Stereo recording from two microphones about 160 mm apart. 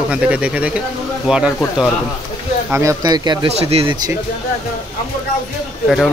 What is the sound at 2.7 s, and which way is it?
Speech, 20° right (ahead or behind).